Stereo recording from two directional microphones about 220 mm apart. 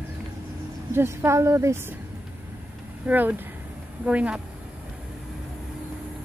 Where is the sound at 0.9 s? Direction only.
10° right (ahead or behind).